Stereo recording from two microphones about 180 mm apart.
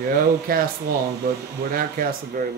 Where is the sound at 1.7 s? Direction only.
50° right (ahead or behind).